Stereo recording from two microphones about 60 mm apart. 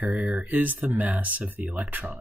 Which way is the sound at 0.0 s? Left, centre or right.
Right.